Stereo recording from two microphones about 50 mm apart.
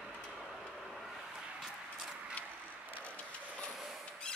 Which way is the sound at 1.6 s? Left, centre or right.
Centre.